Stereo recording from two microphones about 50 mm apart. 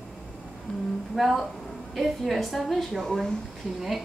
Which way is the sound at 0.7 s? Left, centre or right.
Left.